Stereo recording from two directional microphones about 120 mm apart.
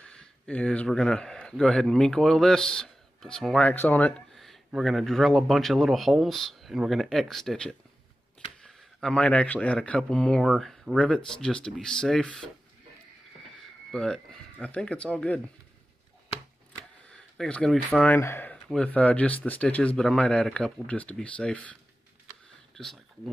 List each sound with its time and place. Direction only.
0.1 s speech: 10° left (ahead or behind)
3.7 s a man's voice: 15° left (ahead or behind)
4.3 s a sound: centre (ahead or behind)
4.7 s a man's voice: centre (ahead or behind)
13.9 s a man's voice: 5° left (ahead or behind)
17.1 s speech: 10° left (ahead or behind)
18.0 s speech: 20° left (ahead or behind)
18.5 s a man's voice: 10° left (ahead or behind)
22.8 s speech: 5° left (ahead or behind)